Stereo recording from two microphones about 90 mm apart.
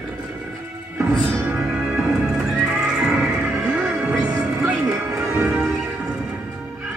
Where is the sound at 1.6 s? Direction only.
35° right (ahead or behind).